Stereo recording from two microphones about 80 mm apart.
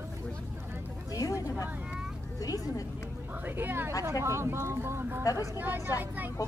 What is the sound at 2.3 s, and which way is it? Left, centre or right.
Cat, left.